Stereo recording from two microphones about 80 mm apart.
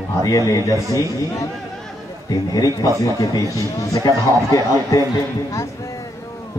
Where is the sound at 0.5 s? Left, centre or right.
Left.